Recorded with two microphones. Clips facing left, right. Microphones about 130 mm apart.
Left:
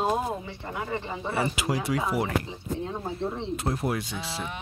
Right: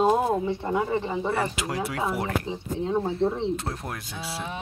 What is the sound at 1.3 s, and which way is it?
Speech, 5° left (ahead or behind).